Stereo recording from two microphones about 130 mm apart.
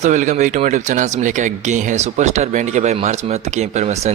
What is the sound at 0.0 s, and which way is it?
Speech, 70° right (ahead or behind).